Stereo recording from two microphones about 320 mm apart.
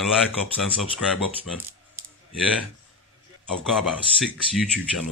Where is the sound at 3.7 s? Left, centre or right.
Centre.